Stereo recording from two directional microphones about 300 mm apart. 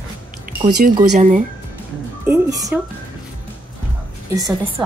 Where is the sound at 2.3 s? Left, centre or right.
Centre.